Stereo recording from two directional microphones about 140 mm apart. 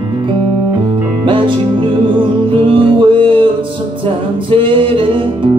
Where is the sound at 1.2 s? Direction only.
35° right (ahead or behind).